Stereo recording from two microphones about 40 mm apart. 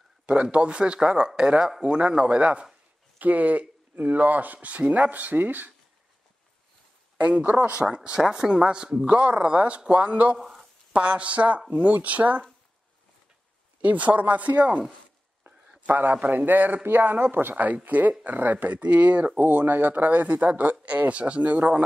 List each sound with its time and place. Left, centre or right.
0.3 s speech: right
3.2 s speech: right
7.2 s speech: right
7.8 s speech: right
10.4 s a sound: centre
10.9 s speech: right
13.7 s speech: right
15.9 s speech: right
17.8 s speech: right